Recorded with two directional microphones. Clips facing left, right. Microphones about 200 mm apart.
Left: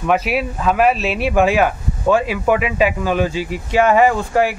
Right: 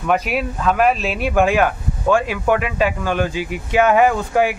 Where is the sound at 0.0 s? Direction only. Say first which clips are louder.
Left 2 dB; 5° left (ahead or behind).